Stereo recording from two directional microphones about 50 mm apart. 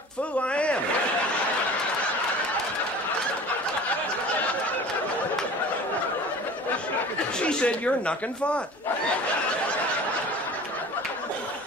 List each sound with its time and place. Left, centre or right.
0.5 s speech: left
7.3 s speech: left